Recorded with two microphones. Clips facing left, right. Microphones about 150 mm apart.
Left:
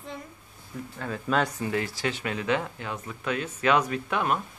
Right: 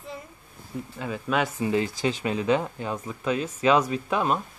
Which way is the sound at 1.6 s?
20° right (ahead or behind).